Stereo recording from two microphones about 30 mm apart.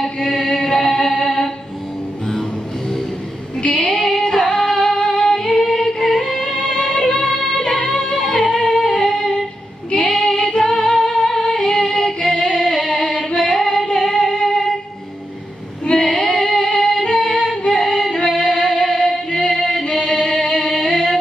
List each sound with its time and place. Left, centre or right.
0.0 s chant: centre
0.9 s music: centre
3.6 s music: left
4.3 s music: centre
6.3 s music: left
9.8 s female singing: left
10.1 s music: centre
11.6 s music: centre
12.6 s singing: centre
13.9 s music: centre
14.3 s music: left
15.9 s female singing: centre
16.3 s music: centre